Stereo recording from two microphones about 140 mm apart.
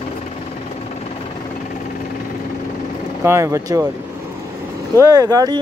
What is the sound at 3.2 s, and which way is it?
Speech, 20° right (ahead or behind).